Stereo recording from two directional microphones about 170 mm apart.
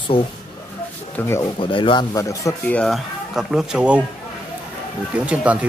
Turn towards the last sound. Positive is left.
turn(degrees=-5)  # may be behind; listen again after turning